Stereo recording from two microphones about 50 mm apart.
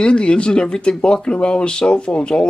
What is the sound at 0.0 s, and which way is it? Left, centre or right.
Speech, centre.